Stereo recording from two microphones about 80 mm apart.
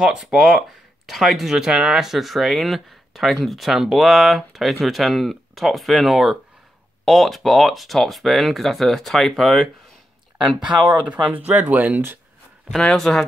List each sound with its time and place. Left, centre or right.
0.0 s speech: centre
11.1 s speech: centre
12.7 s speech: centre